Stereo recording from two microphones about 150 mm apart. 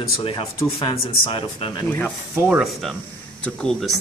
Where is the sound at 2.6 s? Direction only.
Centre (ahead or behind).